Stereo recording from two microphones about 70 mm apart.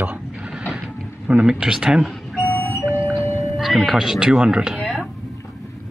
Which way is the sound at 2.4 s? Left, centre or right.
Left.